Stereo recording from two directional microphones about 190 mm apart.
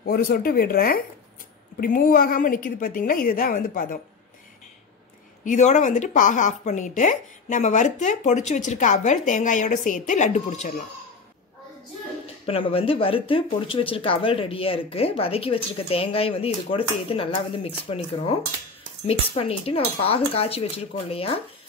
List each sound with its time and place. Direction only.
0.0 s a woman's voice: 50° left (ahead or behind)
5.4 s a woman's voice: 40° left (ahead or behind)
12.4 s a woman's voice: 30° left (ahead or behind)